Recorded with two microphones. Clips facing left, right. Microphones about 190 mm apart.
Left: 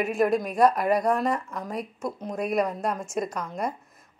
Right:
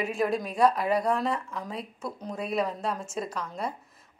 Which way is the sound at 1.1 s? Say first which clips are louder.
Left 3 dB; 45° left (ahead or behind).